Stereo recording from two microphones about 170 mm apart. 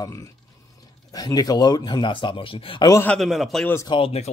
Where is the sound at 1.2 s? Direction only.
20° left (ahead or behind).